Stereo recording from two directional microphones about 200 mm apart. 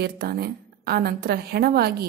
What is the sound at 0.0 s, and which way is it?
A woman's voice, 50° right (ahead or behind).